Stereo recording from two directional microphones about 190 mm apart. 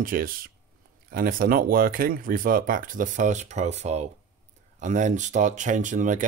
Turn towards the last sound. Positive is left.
turn(degrees=-40)  # may be behind; listen again after turning